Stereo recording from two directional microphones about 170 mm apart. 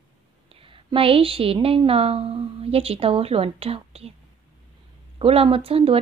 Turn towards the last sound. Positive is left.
turn(degrees=-35)  # may be behind; listen again after turning